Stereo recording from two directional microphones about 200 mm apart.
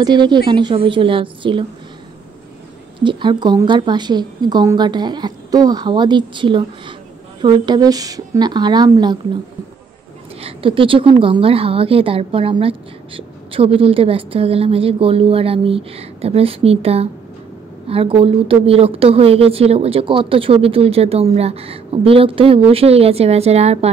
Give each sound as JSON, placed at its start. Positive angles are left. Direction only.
{"t": 0.0, "sound": "a woman's voice", "side_deg": -20}
{"t": 3.0, "sound": "a woman's voice", "side_deg": -25}
{"t": 10.4, "sound": "a woman's voice", "side_deg": -25}